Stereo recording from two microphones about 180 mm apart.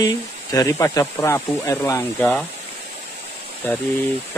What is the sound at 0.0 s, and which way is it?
Speech, 20° left (ahead or behind).